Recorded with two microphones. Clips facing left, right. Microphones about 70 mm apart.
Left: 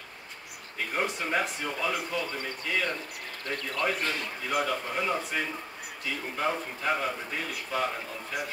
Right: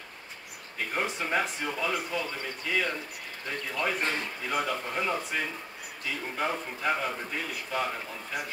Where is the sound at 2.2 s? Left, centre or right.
Centre.